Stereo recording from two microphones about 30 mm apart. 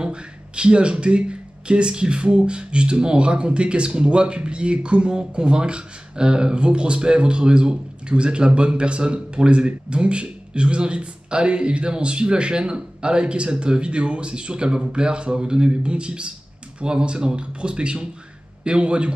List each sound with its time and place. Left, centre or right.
0.0 s a man's voice: right
15.8 s speech: right